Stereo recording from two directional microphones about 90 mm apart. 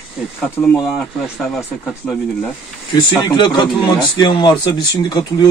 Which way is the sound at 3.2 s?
60° left (ahead or behind).